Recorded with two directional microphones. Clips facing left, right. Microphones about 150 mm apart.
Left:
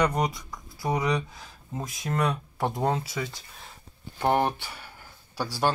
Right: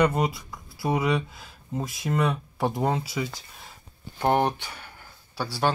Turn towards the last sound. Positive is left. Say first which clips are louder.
# right 1 dB
turn(degrees=10)  # may be behind; listen again after turning